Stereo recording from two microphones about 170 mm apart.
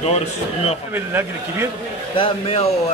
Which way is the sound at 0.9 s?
10° right (ahead or behind).